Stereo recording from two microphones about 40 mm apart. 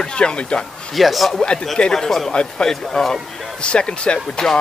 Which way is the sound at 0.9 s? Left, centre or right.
Centre.